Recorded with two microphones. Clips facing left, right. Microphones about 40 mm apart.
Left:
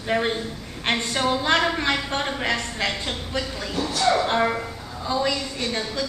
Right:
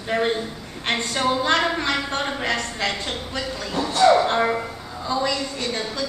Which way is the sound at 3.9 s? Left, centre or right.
Centre.